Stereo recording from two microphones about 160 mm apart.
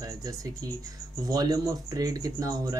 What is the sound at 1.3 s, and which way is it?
Speech, 25° right (ahead or behind).